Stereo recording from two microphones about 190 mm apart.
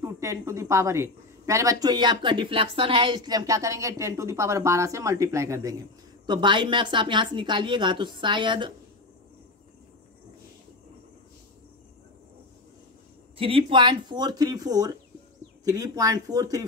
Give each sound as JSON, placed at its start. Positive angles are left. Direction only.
{"t": 0.0, "sound": "a woman's voice", "side_deg": -15}
{"t": 13.4, "sound": "a woman's voice", "side_deg": -30}